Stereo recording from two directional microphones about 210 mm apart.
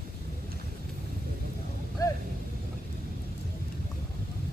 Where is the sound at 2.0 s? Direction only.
15° left (ahead or behind).